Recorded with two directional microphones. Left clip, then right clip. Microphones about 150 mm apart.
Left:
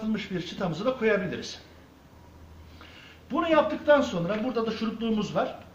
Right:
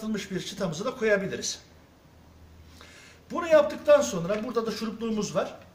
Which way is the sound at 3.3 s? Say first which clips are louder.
Right 2 dB; 20° right (ahead or behind).